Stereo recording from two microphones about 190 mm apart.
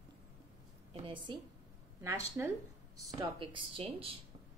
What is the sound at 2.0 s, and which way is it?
Speech, 10° right (ahead or behind).